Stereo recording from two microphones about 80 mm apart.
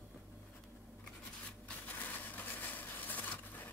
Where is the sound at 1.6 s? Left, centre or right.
Left.